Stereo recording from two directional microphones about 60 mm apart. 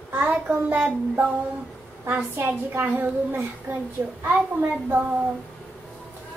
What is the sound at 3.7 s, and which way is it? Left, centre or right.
Speech, right.